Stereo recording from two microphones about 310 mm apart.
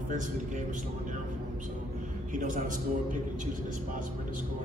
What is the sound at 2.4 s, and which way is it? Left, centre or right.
Speech, right.